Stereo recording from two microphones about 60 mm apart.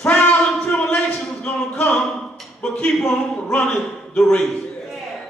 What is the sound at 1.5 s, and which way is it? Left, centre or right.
A man's voice, centre.